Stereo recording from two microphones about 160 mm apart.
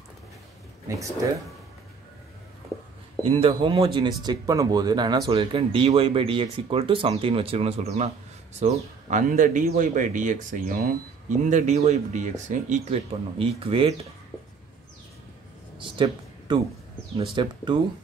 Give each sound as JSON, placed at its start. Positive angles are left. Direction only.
{"t": 0.8, "sound": "speech", "side_deg": -20}
{"t": 3.2, "sound": "speech", "side_deg": -35}
{"t": 15.8, "sound": "a sound", "side_deg": -30}
{"t": 17.3, "sound": "speech", "side_deg": -30}